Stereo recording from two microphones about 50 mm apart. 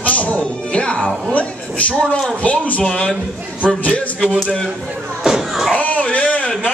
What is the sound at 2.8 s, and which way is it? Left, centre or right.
Speech, centre.